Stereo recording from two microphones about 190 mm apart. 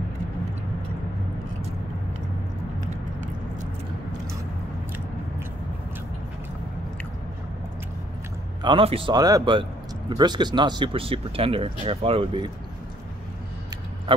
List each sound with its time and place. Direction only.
8.6 s speech: 30° right (ahead or behind)